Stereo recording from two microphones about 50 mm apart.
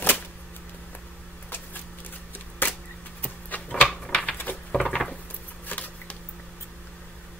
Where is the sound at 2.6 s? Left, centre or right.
Left.